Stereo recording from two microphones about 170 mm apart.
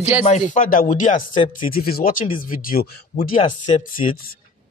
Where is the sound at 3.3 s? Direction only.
35° left (ahead or behind).